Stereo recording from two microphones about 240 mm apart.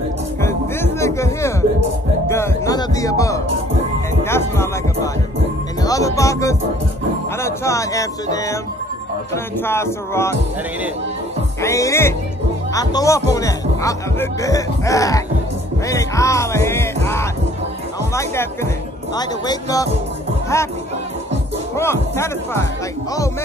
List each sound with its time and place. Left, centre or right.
0.4 s music: centre
7.4 s speech: centre
11.6 s speech: centre
21.7 s speech: centre